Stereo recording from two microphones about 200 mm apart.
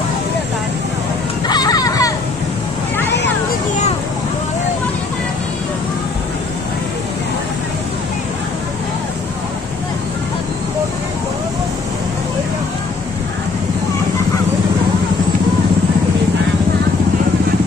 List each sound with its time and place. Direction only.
1.5 s music: 20° left (ahead or behind)